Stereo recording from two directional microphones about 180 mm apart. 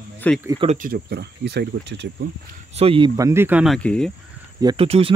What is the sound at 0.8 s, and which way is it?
Speech, 60° right (ahead or behind).